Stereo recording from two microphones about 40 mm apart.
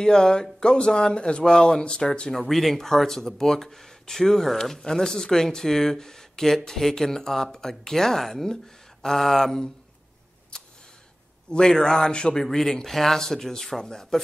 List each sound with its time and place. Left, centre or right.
0.0 s speech: centre
2.3 s speech: centre
10.5 s a sound: centre
11.5 s speech: centre
12.4 s speech: centre